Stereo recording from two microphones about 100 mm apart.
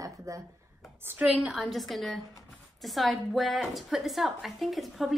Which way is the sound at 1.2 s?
5° right (ahead or behind).